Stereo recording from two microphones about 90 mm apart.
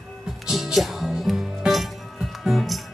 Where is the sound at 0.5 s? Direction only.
Centre (ahead or behind).